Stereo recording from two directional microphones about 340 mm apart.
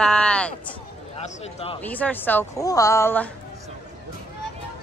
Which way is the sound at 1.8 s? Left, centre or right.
Centre.